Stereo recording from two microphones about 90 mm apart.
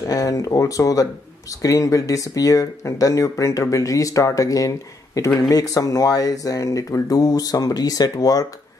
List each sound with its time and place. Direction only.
0.1 s speech: 40° left (ahead or behind)